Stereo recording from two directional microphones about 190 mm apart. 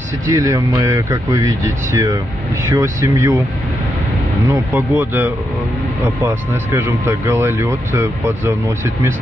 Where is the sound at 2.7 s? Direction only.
15° right (ahead or behind).